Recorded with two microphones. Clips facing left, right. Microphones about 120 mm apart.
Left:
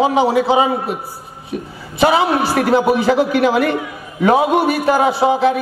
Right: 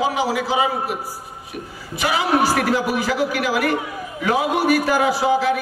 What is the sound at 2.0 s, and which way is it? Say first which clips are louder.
A man's voice: left 5 dB; 30° left (ahead or behind).